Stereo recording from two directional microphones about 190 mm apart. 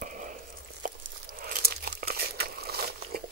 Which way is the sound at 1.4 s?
55° right (ahead or behind).